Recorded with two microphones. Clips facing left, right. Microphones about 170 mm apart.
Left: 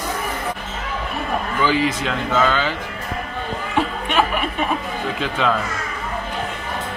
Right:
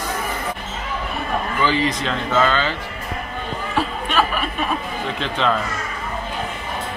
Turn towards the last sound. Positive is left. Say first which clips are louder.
# even
turn(degrees=10)  # may be behind; listen again after turning